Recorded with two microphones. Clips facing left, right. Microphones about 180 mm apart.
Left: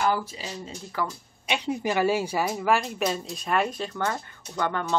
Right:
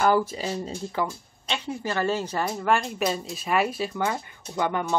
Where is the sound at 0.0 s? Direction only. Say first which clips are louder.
Right 4 dB; 50° right (ahead or behind).